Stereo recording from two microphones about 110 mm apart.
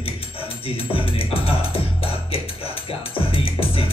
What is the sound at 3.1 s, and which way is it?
Music, 55° left (ahead or behind).